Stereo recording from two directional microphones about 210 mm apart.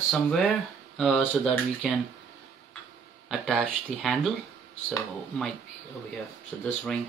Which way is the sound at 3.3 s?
Centre (ahead or behind).